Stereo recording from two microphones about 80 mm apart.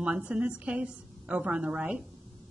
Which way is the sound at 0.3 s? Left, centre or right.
Centre.